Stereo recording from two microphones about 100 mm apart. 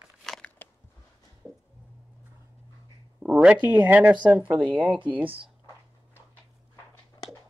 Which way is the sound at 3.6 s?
15° right (ahead or behind).